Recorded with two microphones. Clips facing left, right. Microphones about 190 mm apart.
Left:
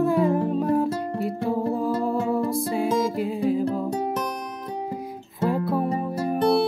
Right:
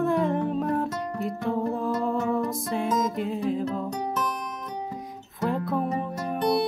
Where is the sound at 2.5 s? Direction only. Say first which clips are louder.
Left 4 dB; centre (ahead or behind).